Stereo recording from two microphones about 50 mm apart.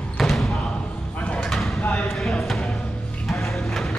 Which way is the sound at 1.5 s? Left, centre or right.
Centre.